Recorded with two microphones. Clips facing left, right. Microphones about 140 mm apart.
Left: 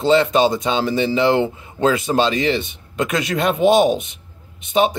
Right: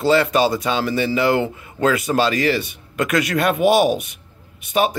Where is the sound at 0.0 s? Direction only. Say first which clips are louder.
Left 1 dB; 20° left (ahead or behind).